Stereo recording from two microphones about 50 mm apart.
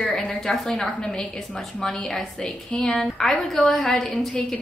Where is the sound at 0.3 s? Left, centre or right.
Centre.